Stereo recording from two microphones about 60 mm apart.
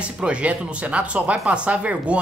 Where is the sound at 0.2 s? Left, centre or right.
Centre.